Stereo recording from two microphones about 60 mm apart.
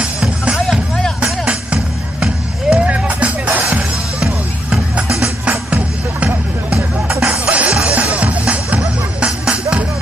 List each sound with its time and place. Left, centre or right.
0.0 s music: centre
0.7 s music: centre
1.2 s music: centre
5.0 s music: centre
5.4 s music: right